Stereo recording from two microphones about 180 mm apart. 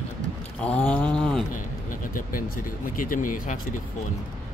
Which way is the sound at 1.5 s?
50° left (ahead or behind).